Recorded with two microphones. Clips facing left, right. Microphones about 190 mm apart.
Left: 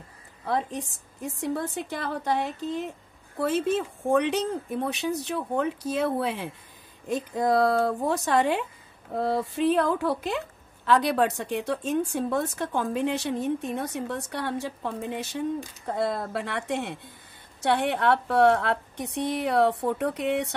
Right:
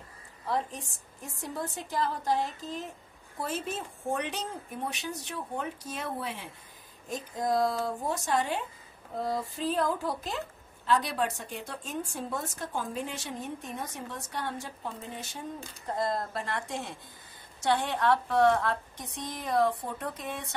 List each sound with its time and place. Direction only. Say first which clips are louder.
1.5 s a woman's voice: left 3 dB; 65° left (ahead or behind)